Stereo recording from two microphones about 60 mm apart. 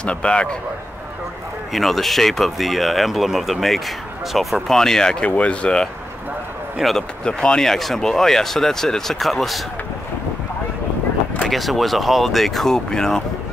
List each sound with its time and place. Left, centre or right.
0.0 s speech: centre
1.7 s speech: centre
5.2 s speech: left
6.8 s speech: centre
7.2 s speech: centre
11.4 s speech: centre